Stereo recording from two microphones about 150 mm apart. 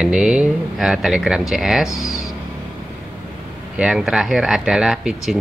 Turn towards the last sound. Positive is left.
turn(degrees=-5)  # may be behind; listen again after turning